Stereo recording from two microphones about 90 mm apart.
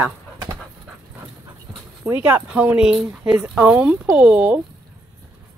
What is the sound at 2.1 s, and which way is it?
A woman's voice, 20° right (ahead or behind).